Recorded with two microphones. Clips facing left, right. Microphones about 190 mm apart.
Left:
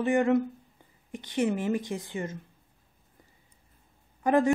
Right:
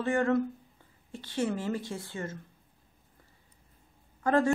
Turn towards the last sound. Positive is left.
turn(degrees=15)  # may be behind; listen again after turning